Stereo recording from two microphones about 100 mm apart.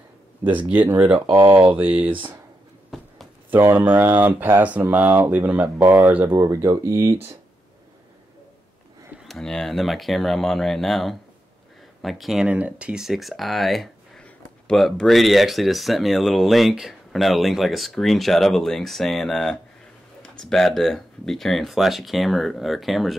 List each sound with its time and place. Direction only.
0.5 s speech: 15° right (ahead or behind)
1.1 s speech: 55° right (ahead or behind)
1.7 s speech: 15° right (ahead or behind)
2.9 s a sound: centre (ahead or behind)
3.4 s speech: 20° right (ahead or behind)
6.3 s speech: 30° right (ahead or behind)
9.2 s speech: 5° left (ahead or behind)
12.4 s speech: 15° right (ahead or behind)